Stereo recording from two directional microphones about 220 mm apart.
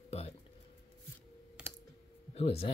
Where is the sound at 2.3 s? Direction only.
25° left (ahead or behind).